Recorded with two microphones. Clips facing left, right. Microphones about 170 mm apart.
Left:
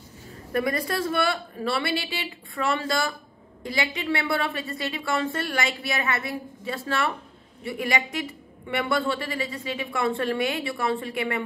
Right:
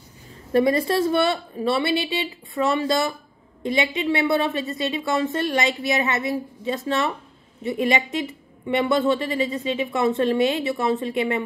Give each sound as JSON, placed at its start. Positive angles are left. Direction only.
{"t": 0.5, "sound": "a woman's voice", "side_deg": -25}